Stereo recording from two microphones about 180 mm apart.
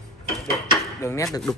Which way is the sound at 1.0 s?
15° left (ahead or behind).